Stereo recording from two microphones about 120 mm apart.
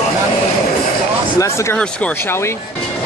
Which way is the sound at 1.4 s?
25° left (ahead or behind).